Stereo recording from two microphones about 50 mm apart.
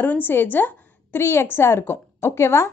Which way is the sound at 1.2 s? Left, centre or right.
Left.